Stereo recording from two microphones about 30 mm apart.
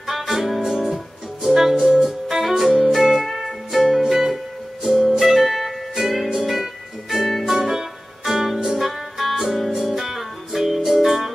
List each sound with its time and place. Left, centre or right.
0.0 s music: centre
0.6 s music: centre
0.8 s music: centre
1.8 s music: right
2.0 s music: centre